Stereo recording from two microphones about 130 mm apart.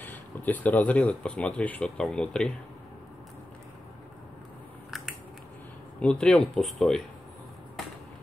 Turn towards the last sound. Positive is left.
turn(degrees=0)  # may be behind; listen again after turning